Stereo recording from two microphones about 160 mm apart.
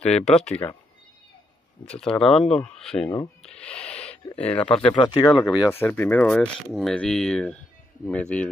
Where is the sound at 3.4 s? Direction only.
5° left (ahead or behind).